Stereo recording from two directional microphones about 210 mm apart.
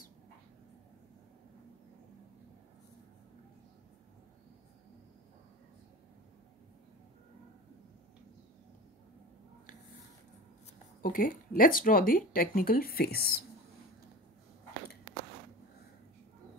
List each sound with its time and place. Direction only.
11.0 s speech: 40° left (ahead or behind)